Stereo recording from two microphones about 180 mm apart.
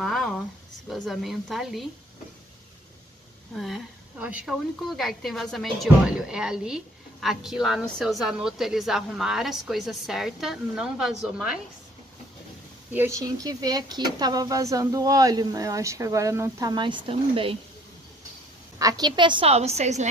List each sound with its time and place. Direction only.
0.0 s a sound: centre (ahead or behind)
0.8 s a woman's voice: centre (ahead or behind)
3.5 s a woman's voice: centre (ahead or behind)
12.9 s speech: 15° right (ahead or behind); by 17.6 s 30° right (ahead or behind)
18.8 s a woman's voice: 20° right (ahead or behind); by 20.1 s 40° right (ahead or behind)